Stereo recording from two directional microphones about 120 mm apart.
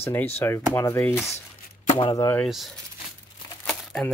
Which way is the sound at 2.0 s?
40° left (ahead or behind).